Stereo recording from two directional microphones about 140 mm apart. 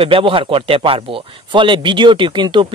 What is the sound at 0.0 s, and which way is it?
A man's voice, 40° right (ahead or behind).